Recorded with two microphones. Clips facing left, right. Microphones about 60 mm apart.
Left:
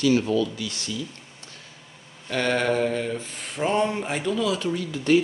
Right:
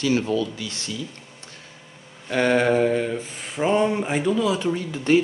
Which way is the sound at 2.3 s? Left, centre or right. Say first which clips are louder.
Right 4 dB; centre.